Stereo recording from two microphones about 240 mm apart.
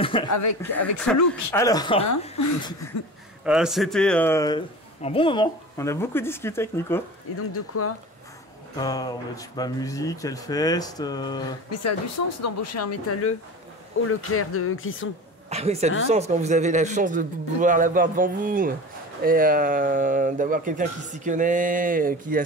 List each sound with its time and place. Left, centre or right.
0.0 s speech: centre
0.7 s speech: centre; by 2.7 s left
3.4 s speech: centre
7.3 s speech: left
8.7 s speech: centre
12.4 s speech: left
14.0 s speech: left
15.5 s speech: right